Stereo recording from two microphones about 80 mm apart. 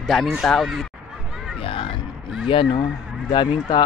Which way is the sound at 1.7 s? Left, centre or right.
Left.